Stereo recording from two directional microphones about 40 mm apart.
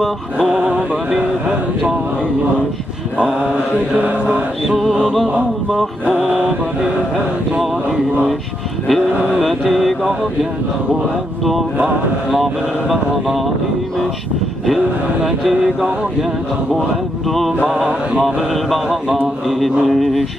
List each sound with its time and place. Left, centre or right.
3.9 s mantra: right
4.6 s speech: centre
8.8 s speech: centre
15.2 s speech: centre
17.3 s speech: centre